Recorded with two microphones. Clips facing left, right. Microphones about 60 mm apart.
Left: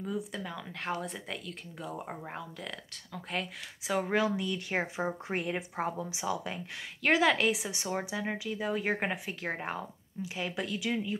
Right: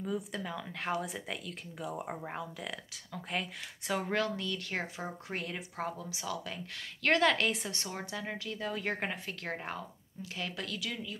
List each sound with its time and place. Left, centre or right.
0.0 s speech: centre; by 11.1 s left